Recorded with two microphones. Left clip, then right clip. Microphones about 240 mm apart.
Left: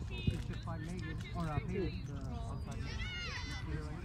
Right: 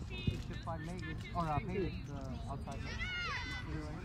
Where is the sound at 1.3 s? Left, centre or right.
Right.